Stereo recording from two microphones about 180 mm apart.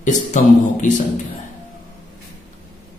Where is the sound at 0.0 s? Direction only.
45° left (ahead or behind).